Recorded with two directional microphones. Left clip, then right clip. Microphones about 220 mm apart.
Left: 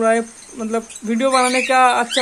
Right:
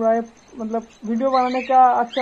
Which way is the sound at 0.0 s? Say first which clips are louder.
Left 3 dB; 65° left (ahead or behind).